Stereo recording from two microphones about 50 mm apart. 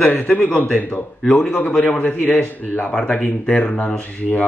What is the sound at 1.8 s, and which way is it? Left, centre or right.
Speech, left.